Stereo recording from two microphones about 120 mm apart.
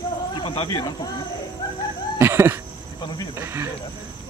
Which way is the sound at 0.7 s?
35° left (ahead or behind).